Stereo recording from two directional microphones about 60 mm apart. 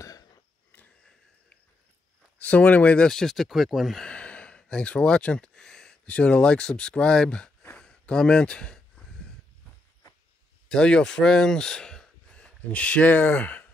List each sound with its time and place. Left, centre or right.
2.3 s speech: left
3.1 s speech: centre
4.0 s speech: centre
7.7 s a sound: centre
10.7 s speech: centre